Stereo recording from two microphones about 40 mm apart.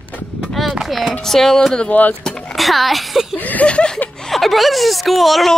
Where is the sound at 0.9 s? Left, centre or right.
Centre.